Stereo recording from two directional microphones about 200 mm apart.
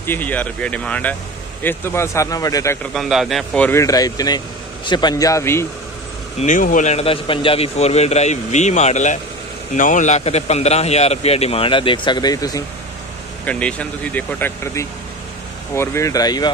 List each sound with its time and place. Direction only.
0.0 s speech: 10° left (ahead or behind)
2.9 s speech: centre (ahead or behind)
6.4 s a man's voice: 40° left (ahead or behind); by 12.6 s 20° left (ahead or behind)
13.5 s speech: 5° left (ahead or behind)